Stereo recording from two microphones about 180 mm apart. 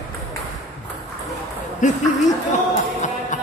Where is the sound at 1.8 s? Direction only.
45° left (ahead or behind).